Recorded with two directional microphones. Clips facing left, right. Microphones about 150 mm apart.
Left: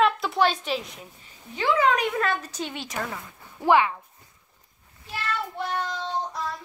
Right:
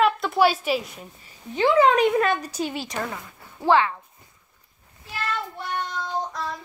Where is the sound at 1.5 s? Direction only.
25° right (ahead or behind).